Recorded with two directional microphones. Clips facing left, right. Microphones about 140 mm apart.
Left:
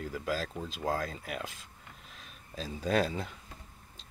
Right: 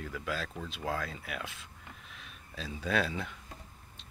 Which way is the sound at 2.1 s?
35° left (ahead or behind).